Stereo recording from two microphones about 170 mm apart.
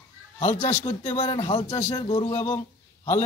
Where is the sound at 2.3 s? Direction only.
20° left (ahead or behind).